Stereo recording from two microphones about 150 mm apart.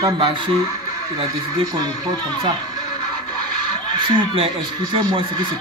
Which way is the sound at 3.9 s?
30° right (ahead or behind).